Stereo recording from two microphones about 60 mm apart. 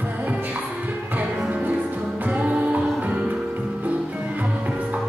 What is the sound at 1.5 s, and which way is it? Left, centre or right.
Music, right.